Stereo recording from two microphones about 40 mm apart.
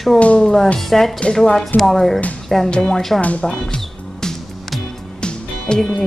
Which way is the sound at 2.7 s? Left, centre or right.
Centre.